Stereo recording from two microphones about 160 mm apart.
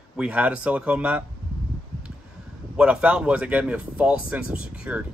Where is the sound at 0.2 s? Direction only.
5° right (ahead or behind).